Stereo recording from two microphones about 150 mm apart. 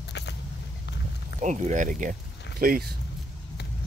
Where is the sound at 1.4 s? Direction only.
55° right (ahead or behind); by 2.8 s 75° right (ahead or behind).